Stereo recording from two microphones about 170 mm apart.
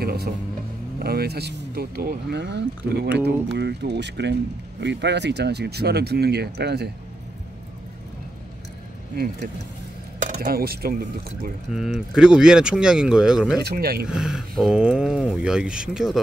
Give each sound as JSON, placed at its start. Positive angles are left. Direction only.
{"t": 0.0, "sound": "speech", "side_deg": -65}
{"t": 3.4, "sound": "speech", "side_deg": -80}
{"t": 9.1, "sound": "speech", "side_deg": -65}
{"t": 10.1, "sound": "speech", "side_deg": -50}
{"t": 11.7, "sound": "speech", "side_deg": -5}
{"t": 13.7, "sound": "speech", "side_deg": -65}
{"t": 14.0, "sound": "speech", "side_deg": -5}